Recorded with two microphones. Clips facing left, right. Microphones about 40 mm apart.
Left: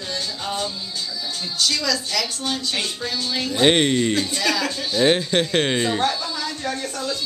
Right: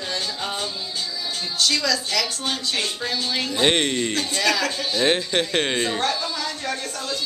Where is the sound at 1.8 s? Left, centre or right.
Centre.